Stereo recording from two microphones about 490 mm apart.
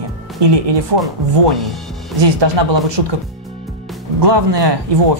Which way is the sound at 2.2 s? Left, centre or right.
Right.